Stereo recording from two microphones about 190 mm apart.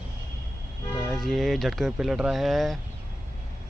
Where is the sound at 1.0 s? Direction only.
Centre (ahead or behind).